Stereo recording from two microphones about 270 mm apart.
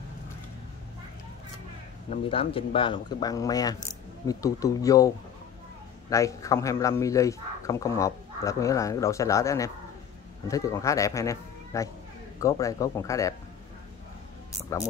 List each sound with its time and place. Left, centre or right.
2.0 s a man's voice: centre